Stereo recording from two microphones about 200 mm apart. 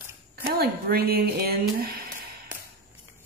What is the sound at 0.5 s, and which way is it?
Speech, 50° right (ahead or behind).